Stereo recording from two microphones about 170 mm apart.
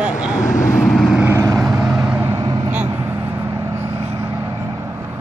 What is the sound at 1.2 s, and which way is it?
Vehicle, 15° right (ahead or behind).